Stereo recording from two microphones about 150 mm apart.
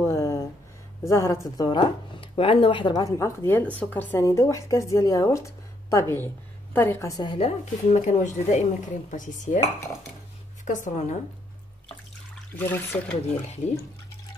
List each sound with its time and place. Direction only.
0.0 s a sound: 20° left (ahead or behind)
1.0 s speech: 20° left (ahead or behind)
1.6 s speech: 30° left (ahead or behind)
2.9 s speech: 20° left (ahead or behind)
7.3 s a woman's voice: 50° left (ahead or behind)
12.5 s speech: 15° left (ahead or behind)